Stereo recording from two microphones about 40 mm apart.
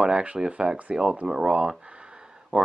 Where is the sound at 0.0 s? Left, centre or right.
Right.